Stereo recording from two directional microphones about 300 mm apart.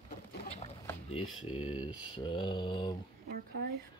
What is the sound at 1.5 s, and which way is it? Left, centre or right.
Speech, centre.